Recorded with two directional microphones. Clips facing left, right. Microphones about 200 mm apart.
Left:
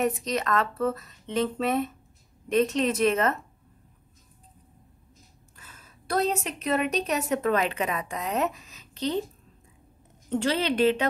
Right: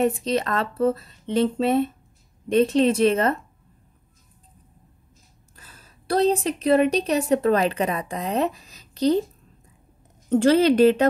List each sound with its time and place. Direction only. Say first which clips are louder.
0.0 s speech: right 5 dB; 30° right (ahead or behind)
5.6 s a woman's voice: right 1 dB; 35° right (ahead or behind)
10.3 s a woman's voice: right 9 dB; 45° right (ahead or behind)